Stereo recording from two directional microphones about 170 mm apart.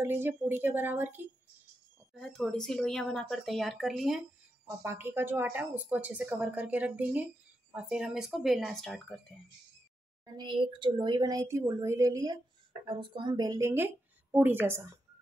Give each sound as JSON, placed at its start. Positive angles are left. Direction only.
{"t": 0.0, "sound": "a woman's voice", "side_deg": -10}
{"t": 2.1, "sound": "speech", "side_deg": 5}
{"t": 4.6, "sound": "a woman's voice", "side_deg": -10}
{"t": 10.2, "sound": "a woman's voice", "side_deg": -25}